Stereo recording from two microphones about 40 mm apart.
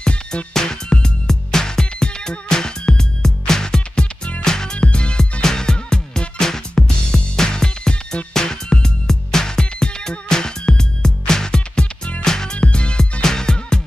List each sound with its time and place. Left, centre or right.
0.0 s music: centre
4.7 s music: left
5.4 s music: centre